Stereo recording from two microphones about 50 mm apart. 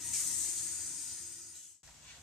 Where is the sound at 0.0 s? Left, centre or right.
Centre.